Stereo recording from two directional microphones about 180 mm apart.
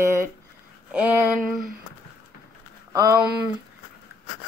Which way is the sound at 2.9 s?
20° right (ahead or behind).